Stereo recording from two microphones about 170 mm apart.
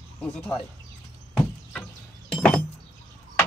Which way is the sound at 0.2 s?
5° left (ahead or behind).